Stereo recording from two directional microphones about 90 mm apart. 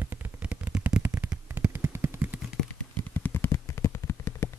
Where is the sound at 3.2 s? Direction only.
25° left (ahead or behind).